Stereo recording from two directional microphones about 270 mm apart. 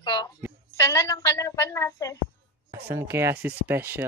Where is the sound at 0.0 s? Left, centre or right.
Centre.